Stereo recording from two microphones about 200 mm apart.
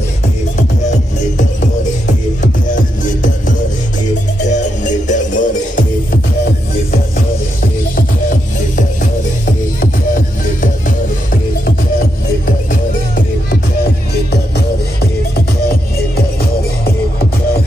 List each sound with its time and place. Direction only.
2.4 s music: 40° left (ahead or behind)
4.5 s music: 40° left (ahead or behind)
7.9 s music: 40° left (ahead or behind)